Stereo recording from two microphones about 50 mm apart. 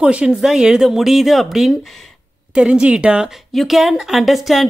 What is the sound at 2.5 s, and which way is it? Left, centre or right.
Speech, centre.